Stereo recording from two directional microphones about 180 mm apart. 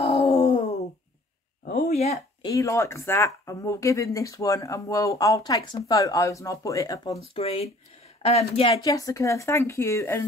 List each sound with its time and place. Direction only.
0.0 s wail: 30° left (ahead or behind)
1.7 s a sound: 40° left (ahead or behind)
2.4 s speech: 15° left (ahead or behind)
7.3 s speech: 35° left (ahead or behind)
8.8 s speech: 20° left (ahead or behind)